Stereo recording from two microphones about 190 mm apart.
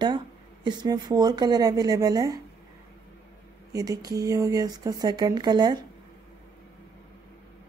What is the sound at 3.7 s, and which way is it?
Speech, 20° right (ahead or behind).